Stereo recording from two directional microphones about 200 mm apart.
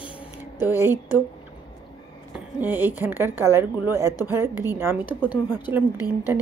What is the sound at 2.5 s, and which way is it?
A woman's voice, 10° right (ahead or behind).